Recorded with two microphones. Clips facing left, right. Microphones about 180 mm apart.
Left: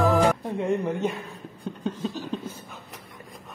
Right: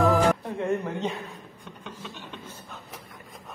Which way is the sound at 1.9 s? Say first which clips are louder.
Left 11 dB; 35° left (ahead or behind).